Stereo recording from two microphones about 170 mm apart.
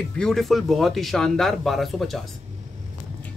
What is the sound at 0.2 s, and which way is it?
Speech, centre (ahead or behind).